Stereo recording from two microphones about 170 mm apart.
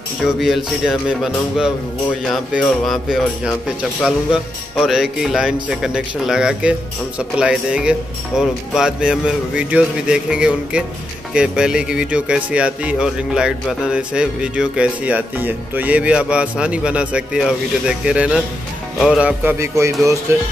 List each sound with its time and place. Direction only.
0.2 s speech: centre (ahead or behind); by 20.2 s 15° right (ahead or behind)